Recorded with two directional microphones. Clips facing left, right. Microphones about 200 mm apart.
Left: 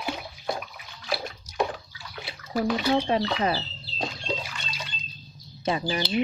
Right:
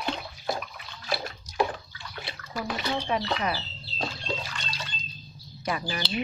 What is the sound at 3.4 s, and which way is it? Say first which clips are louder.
Speech: left 4 dB; 30° left (ahead or behind).